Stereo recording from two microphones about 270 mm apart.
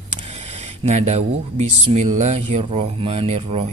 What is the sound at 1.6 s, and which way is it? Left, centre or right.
Speech, right.